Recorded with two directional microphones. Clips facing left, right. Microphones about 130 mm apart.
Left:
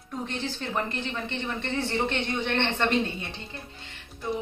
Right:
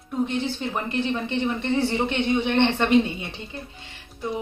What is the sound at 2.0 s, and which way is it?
Speech, 10° right (ahead or behind).